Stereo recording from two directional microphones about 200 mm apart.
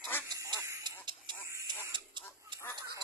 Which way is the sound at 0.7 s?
20° right (ahead or behind).